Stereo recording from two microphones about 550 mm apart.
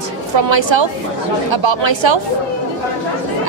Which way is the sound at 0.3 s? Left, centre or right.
Right.